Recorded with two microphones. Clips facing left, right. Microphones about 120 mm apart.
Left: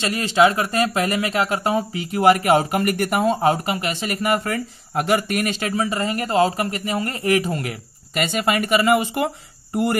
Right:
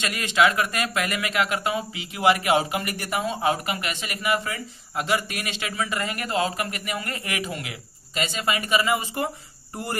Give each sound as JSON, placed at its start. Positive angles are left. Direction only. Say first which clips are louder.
{"t": 0.0, "sound": "speech", "louder": "left 5 dB", "side_deg": 30}
{"t": 3.5, "sound": "speech", "louder": "left 5 dB", "side_deg": 30}
{"t": 8.1, "sound": "speech", "louder": "left 5 dB", "side_deg": 60}